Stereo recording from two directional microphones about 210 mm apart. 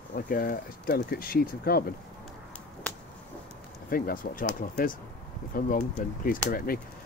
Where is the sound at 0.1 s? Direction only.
45° left (ahead or behind).